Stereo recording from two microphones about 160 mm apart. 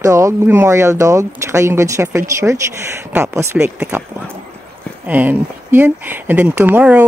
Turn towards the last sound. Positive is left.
turn(degrees=-10)  # may be behind; listen again after turning